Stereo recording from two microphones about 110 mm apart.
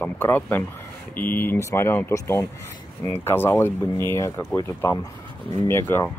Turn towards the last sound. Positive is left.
turn(degrees=20)  # may be behind; listen again after turning